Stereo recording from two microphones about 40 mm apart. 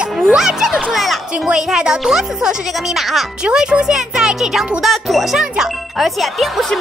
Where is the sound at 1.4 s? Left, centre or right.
Centre.